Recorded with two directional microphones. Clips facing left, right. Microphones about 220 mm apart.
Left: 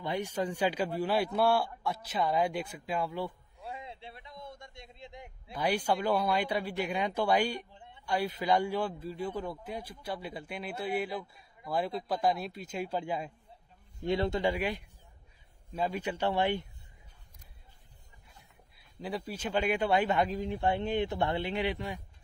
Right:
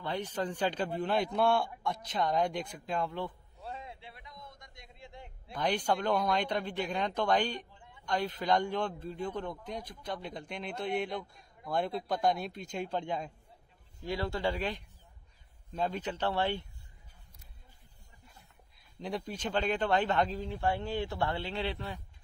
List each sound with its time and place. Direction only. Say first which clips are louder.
0.0 s a man's voice: left 2 dB; 10° left (ahead or behind)
3.9 s a man's voice: left 3 dB; 30° left (ahead or behind); by 7.6 s 10° left (ahead or behind)
7.7 s a sound: left 4 dB; 25° left (ahead or behind)
8.0 s a man's voice: left 1 dB; 10° left (ahead or behind)
14.0 s a man's voice: left 4 dB; 20° left (ahead or behind)
18.9 s a man's voice: even; 5° left (ahead or behind)